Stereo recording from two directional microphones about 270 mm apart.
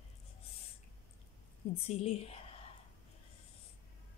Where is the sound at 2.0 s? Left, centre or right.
Left.